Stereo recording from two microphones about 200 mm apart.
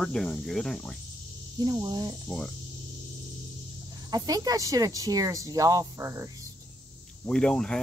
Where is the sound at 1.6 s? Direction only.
20° right (ahead or behind).